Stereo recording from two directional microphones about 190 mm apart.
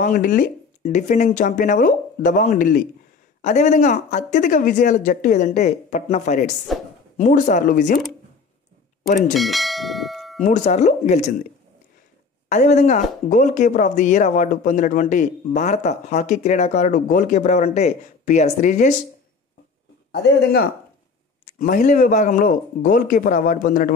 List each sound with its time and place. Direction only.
0.0 s speech: 45° left (ahead or behind)
9.3 s church bell: centre (ahead or behind)
10.4 s speech: 40° left (ahead or behind)
12.4 s speech: 40° left (ahead or behind)
20.1 s a man's voice: 55° left (ahead or behind)
21.5 s speech: 45° left (ahead or behind)